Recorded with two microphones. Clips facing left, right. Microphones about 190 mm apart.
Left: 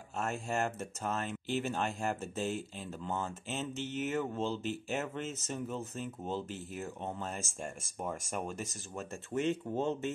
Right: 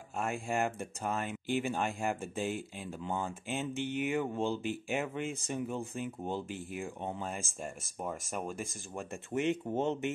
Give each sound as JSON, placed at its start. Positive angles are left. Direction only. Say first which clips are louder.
{"t": 0.2, "sound": "speech", "louder": "right 1 dB", "side_deg": -10}